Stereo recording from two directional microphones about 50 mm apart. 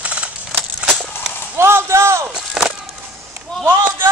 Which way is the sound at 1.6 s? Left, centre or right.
Right.